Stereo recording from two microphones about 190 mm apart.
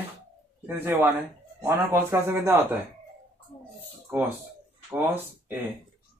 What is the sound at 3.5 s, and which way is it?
Speech, 30° left (ahead or behind).